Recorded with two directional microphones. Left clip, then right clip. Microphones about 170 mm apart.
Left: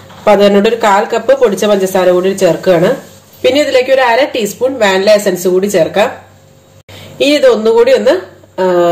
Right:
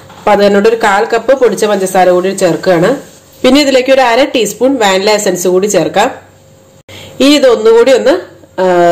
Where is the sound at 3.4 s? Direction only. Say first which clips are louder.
Right 2 dB; 40° right (ahead or behind).